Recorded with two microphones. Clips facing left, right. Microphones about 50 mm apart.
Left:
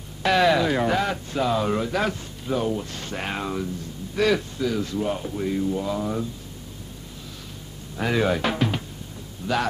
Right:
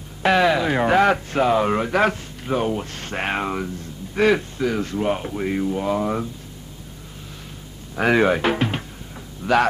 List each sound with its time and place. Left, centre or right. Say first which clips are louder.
0.2 s speech: right 2 dB; right
0.7 s speech: right 3 dB; right
0.9 s speech: right 7 dB; right
7.9 s speech: right 6 dB; right
8.3 s music: right 3 dB; right